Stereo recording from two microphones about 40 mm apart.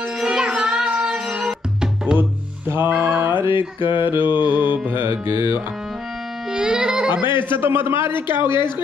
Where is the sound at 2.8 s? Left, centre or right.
Right.